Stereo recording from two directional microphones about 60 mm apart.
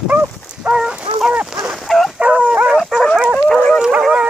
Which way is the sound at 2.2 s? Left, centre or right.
Centre.